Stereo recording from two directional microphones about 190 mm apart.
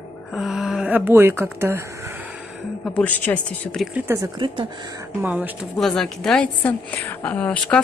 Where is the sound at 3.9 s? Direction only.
15° right (ahead or behind).